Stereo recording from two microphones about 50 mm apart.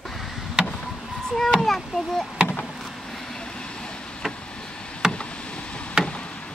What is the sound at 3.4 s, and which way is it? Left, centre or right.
Train, centre.